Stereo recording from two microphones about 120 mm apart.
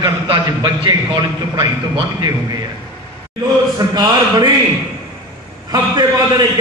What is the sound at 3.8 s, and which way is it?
Speech, 35° right (ahead or behind).